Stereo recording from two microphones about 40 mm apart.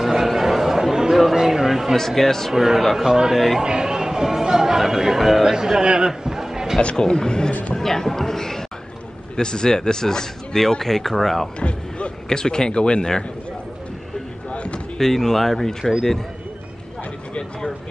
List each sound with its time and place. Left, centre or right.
0.0 s chatter: centre
1.3 s a sound: centre
2.0 s speech: centre
2.5 s speech: centre
3.1 s a man's voice: centre
7.0 s speech: centre
12.3 s speech: centre
14.5 s basketball bounce: left
15.0 s speech: centre